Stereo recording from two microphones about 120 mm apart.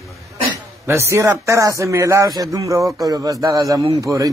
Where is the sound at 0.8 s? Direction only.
20° right (ahead or behind).